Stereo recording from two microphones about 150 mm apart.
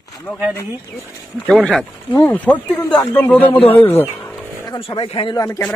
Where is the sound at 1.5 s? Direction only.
5° left (ahead or behind).